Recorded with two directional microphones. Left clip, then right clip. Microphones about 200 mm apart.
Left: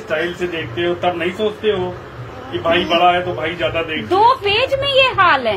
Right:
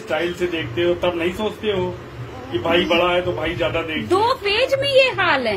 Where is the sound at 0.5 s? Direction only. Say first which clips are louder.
Even; 40° right (ahead or behind).